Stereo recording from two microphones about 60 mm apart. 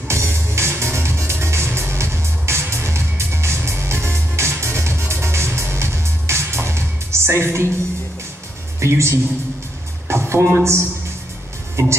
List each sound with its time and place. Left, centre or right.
0.1 s music: right
8.7 s speech: right
10.0 s music: right
11.8 s speech: right